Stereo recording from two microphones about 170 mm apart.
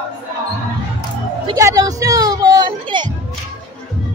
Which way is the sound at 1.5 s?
20° right (ahead or behind).